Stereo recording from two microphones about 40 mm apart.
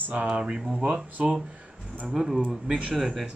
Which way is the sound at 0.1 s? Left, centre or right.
Right.